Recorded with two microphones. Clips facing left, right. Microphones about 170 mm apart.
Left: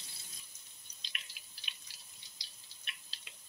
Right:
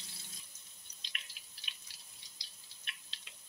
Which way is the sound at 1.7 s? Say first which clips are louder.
Left 1 dB; centre (ahead or behind).